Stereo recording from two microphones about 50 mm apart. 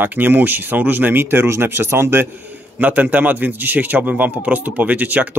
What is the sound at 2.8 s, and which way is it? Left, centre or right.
A man's voice, right.